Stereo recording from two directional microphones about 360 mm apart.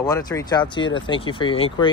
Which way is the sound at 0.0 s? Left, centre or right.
Centre.